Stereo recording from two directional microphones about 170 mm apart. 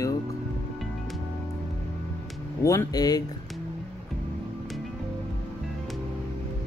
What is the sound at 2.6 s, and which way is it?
Speech, 20° left (ahead or behind).